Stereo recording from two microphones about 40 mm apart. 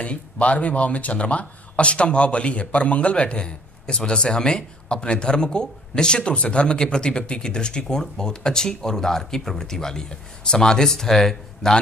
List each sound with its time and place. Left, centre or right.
0.0 s speech: left; by 11.7 s centre